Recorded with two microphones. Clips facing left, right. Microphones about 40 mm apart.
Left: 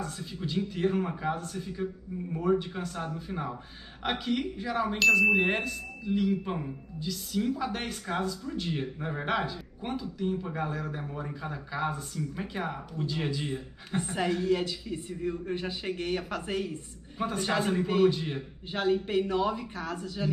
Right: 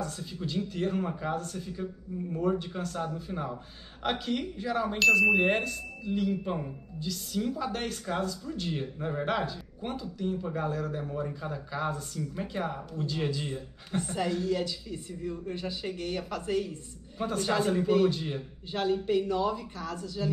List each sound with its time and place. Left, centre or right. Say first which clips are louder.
0.0 s speech: even; centre; by 16.7 s left
17.2 s speech: right 1 dB; centre
18.7 s a man's voice: even; left